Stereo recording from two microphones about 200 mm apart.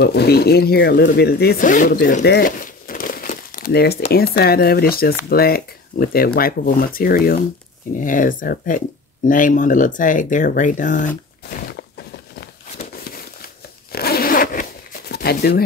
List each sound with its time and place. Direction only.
0.0 s speech: 55° left (ahead or behind)
13.9 s zipper: 50° left (ahead or behind)